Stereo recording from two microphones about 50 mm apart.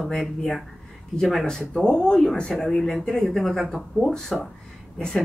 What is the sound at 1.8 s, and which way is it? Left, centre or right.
A woman's voice, centre.